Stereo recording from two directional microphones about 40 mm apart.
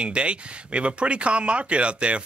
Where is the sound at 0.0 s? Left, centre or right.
Right.